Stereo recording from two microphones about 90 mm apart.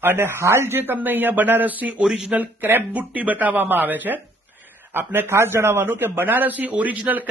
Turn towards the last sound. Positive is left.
turn(degrees=-15)  # may be behind; listen again after turning